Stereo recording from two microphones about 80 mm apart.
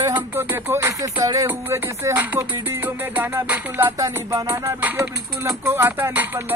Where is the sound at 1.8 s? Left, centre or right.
Right.